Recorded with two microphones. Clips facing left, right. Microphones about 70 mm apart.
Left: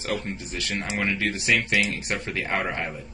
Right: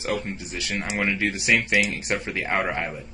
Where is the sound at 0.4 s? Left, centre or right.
Centre.